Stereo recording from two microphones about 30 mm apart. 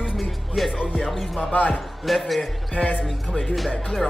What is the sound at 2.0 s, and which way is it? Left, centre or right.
Speech, centre.